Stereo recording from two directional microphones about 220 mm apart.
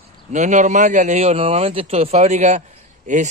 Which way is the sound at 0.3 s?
35° right (ahead or behind).